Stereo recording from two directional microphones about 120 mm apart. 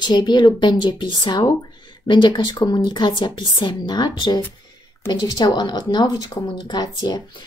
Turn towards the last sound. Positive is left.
turn(degrees=35)  # may be behind; listen again after turning